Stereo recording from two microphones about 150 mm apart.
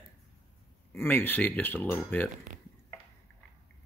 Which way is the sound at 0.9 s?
15° left (ahead or behind).